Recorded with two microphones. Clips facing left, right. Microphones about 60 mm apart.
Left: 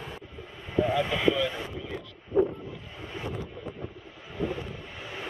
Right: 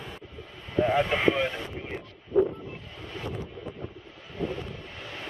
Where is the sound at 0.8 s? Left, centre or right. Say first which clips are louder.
Right 3 dB; right.